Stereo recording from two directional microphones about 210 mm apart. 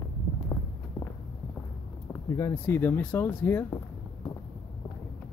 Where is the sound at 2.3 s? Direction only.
15° left (ahead or behind).